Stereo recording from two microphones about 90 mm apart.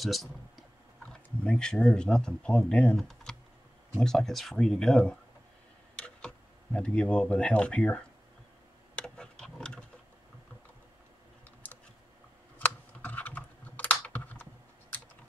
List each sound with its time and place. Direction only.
0.0 s speech: centre (ahead or behind)
1.4 s speech: 10° left (ahead or behind)
3.0 s speech: 5° left (ahead or behind)
8.9 s a sound: 10° left (ahead or behind)
11.6 s typing: 20° left (ahead or behind)
12.5 s computer keyboard: 20° left (ahead or behind)